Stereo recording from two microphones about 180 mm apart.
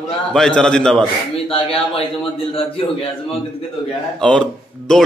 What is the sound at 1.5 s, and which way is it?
Speech, 30° left (ahead or behind).